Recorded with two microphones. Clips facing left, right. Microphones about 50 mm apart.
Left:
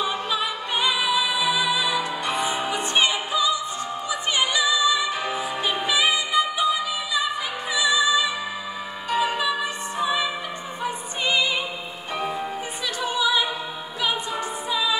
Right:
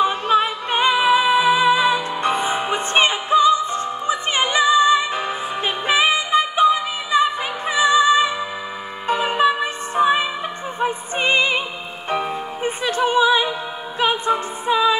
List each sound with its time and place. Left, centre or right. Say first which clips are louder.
0.0 s music: right 8 dB; right